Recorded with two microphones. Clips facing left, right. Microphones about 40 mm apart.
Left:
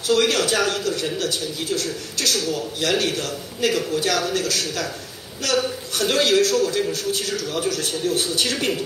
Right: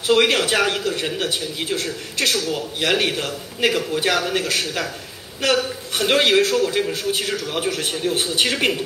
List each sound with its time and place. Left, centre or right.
0.0 s a man's voice: right